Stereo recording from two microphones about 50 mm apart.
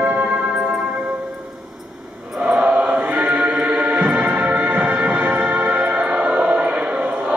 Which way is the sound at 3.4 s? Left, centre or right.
Right.